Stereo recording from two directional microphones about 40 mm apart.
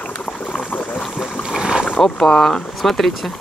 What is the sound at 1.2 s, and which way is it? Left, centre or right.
Boat, centre.